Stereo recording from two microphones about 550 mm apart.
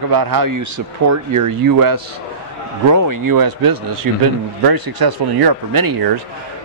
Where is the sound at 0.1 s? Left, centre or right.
Right.